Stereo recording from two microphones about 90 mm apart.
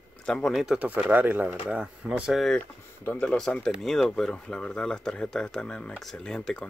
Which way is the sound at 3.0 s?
20° left (ahead or behind).